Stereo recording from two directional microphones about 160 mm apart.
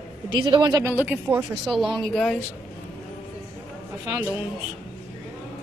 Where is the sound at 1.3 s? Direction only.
10° right (ahead or behind).